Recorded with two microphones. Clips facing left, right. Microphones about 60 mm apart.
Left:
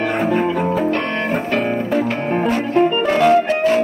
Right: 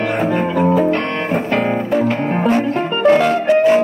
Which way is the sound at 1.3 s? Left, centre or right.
Centre.